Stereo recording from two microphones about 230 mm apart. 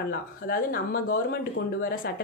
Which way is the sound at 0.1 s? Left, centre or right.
Left.